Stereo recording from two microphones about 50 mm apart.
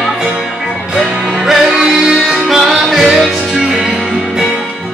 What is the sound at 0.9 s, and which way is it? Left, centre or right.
Music, centre.